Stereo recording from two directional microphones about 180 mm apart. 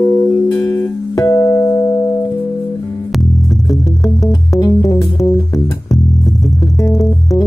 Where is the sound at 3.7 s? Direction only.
20° left (ahead or behind).